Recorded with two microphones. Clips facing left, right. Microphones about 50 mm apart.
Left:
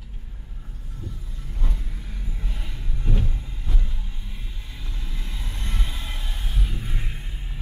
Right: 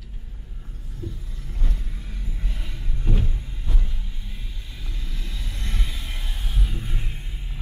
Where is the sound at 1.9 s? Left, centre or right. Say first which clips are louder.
Even; centre.